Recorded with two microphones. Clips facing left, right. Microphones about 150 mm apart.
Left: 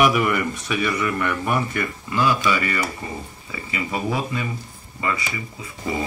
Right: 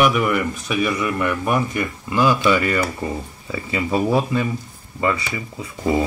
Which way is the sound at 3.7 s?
35° right (ahead or behind).